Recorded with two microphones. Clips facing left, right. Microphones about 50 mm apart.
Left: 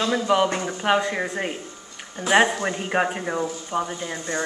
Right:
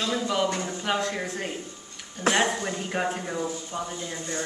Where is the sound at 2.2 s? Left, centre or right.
Left.